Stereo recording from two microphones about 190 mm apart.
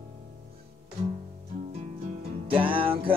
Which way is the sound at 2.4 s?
30° right (ahead or behind).